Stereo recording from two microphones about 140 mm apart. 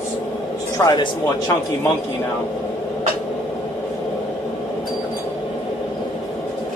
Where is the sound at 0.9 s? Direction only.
30° left (ahead or behind).